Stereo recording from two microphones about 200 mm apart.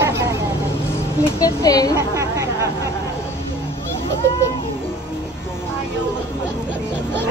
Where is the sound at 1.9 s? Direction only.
15° right (ahead or behind).